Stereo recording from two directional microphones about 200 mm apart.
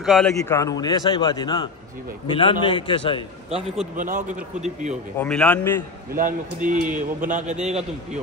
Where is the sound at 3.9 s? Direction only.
40° right (ahead or behind).